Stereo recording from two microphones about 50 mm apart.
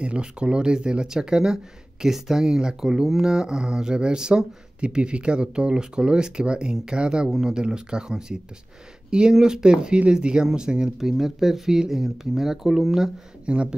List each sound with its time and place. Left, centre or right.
0.0 s speech: right
13.5 s speech: centre